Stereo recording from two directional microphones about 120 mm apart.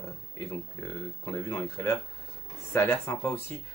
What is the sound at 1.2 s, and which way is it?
Speech, 20° left (ahead or behind).